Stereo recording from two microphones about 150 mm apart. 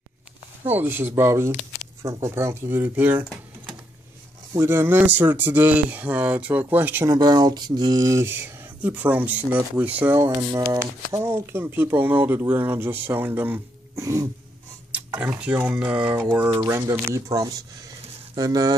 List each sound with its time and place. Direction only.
0.7 s speech: 15° right (ahead or behind)
4.6 s speech: 15° right (ahead or behind)
7.1 s speech: 25° right (ahead or behind)
14.9 s speech: 10° right (ahead or behind)